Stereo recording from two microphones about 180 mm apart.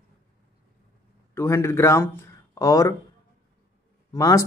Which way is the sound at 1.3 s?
15° left (ahead or behind).